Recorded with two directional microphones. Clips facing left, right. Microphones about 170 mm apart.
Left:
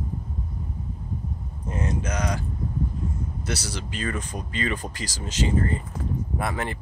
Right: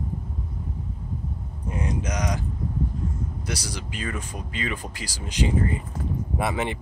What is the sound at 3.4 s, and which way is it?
Speech, 15° right (ahead or behind).